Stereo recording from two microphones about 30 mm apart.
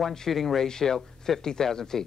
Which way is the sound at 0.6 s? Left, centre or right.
Left.